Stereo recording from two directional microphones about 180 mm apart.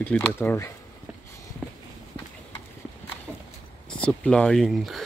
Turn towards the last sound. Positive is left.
turn(degrees=0)  # may be behind; listen again after turning